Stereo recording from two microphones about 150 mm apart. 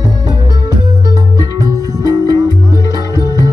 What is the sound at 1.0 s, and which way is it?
Music, 25° right (ahead or behind).